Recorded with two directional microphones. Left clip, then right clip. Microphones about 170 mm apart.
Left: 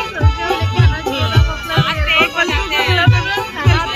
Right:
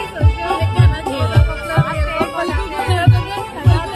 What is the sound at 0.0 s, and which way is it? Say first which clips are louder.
Music: left 2 dB; 25° right (ahead or behind).